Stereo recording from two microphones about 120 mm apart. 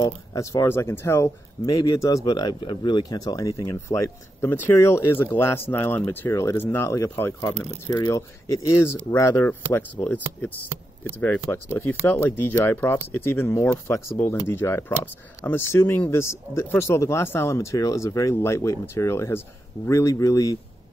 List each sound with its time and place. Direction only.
0.0 s speech: 30° left (ahead or behind)
11.1 s speech: 15° left (ahead or behind)